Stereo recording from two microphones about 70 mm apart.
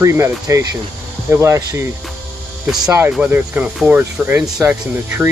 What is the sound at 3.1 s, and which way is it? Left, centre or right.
Speech, right.